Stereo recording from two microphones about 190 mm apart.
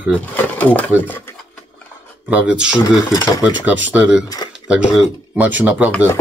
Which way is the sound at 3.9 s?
5° right (ahead or behind).